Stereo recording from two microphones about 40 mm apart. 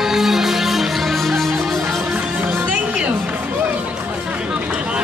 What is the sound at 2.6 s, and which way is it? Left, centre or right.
Music, right.